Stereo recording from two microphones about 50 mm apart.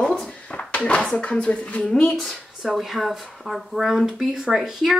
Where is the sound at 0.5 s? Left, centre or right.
Left.